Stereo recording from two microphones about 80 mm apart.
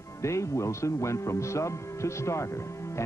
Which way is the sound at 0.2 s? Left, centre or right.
Left.